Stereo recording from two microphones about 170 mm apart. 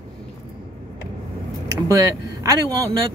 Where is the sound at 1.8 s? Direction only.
20° right (ahead or behind).